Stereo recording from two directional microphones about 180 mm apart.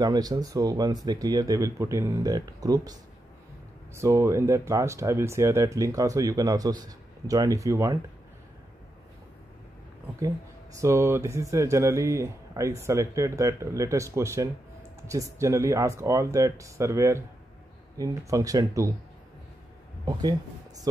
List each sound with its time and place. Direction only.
0.0 s speech: 20° right (ahead or behind)
10.8 s speech: 15° right (ahead or behind)
20.1 s speech: 20° right (ahead or behind)